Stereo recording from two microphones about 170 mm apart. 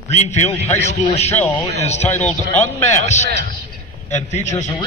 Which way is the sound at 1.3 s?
10° left (ahead or behind).